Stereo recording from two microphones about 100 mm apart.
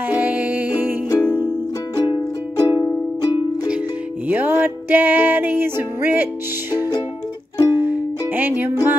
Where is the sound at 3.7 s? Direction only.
15° right (ahead or behind).